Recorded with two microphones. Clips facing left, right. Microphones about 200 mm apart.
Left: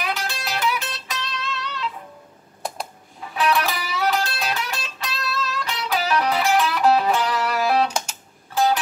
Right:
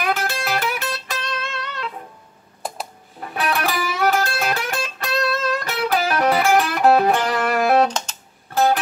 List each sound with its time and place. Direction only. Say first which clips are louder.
0.0 s music: right 5 dB; 50° right (ahead or behind)
3.2 s music: left 1 dB; 55° right (ahead or behind)